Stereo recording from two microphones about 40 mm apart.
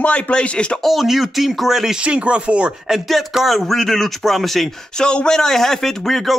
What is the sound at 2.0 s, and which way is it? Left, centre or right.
Speech, right.